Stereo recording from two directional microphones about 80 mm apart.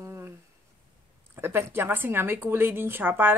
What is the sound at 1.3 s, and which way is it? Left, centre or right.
A woman's voice, right.